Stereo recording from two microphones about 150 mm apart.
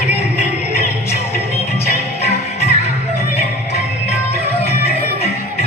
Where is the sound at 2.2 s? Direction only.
45° left (ahead or behind).